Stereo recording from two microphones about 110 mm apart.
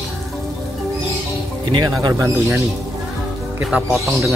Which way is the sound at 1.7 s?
40° right (ahead or behind).